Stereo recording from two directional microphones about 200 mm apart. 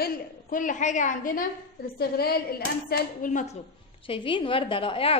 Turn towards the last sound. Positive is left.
turn(degrees=25)  # may be behind; listen again after turning